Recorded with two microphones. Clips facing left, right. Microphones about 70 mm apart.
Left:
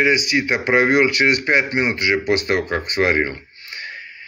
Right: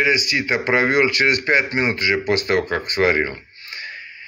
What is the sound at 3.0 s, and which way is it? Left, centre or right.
Speech, left.